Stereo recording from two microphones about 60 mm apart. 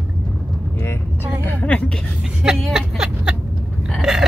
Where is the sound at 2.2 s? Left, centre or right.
Centre.